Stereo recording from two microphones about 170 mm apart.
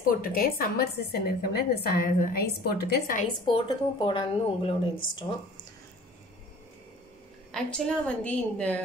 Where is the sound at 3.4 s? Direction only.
30° left (ahead or behind).